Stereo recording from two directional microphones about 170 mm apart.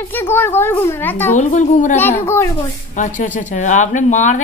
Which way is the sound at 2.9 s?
45° left (ahead or behind).